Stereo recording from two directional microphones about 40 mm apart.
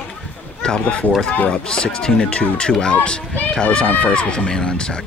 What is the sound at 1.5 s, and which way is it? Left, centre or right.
Speech, left.